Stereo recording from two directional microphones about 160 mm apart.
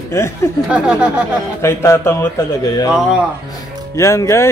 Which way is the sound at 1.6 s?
15° left (ahead or behind).